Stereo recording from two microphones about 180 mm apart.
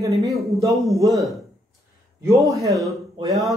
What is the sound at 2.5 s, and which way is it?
Speech, 15° right (ahead or behind).